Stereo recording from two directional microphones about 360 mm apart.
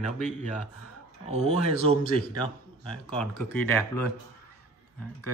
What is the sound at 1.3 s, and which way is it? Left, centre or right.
Speech, centre.